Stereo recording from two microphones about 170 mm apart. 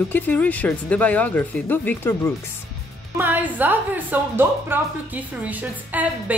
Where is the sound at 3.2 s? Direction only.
10° right (ahead or behind).